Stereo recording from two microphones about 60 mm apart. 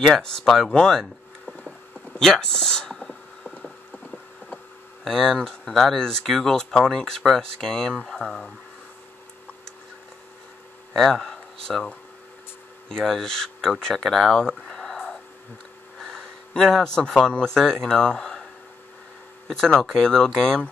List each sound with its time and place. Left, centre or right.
0.0 s speech: centre
3.9 s mechanisms: centre
5.0 s speech: centre
10.9 s speech: centre
14.7 s a sound: centre
16.0 s speech: centre